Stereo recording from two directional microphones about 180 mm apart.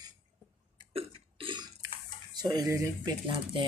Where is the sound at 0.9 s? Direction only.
30° right (ahead or behind).